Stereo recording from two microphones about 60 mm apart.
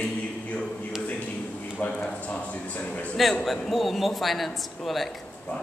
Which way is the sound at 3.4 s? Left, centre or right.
Centre.